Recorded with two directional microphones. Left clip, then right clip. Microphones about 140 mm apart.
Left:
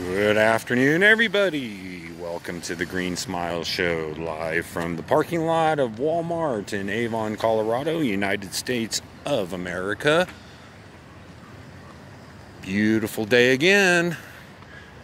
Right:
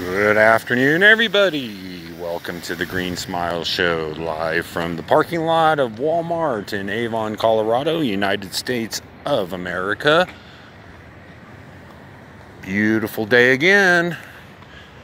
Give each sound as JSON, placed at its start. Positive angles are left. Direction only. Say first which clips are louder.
{"t": 0.1, "sound": "speech", "louder": "right 5 dB", "side_deg": 20}
{"t": 12.6, "sound": "speech", "louder": "right 4 dB", "side_deg": 20}